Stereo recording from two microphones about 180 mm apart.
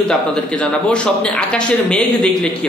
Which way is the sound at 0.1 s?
5° left (ahead or behind).